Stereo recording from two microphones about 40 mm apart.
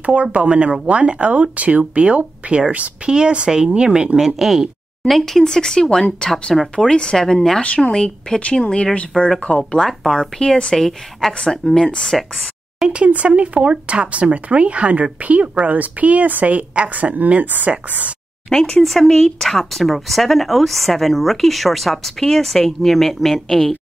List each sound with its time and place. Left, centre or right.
0.0 s speech: right
4.4 s speech: centre
6.5 s speech: centre
6.9 s speech: centre
7.6 s speech: left
7.9 s speech: centre
9.1 s speech: left; by 12.2 s centre
13.1 s speech: right
18.5 s speech: centre
18.9 s speech: centre